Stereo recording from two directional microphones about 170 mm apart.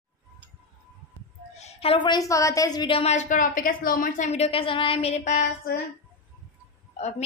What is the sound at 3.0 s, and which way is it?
A woman's voice, 45° left (ahead or behind).